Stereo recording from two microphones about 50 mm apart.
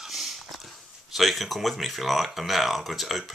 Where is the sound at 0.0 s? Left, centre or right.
Centre.